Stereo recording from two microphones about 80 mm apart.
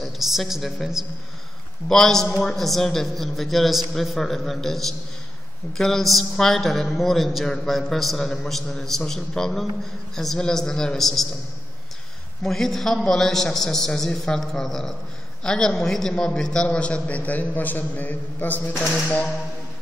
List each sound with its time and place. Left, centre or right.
0.0 s a man's voice: centre
12.4 s a man's voice: centre; by 19.2 s left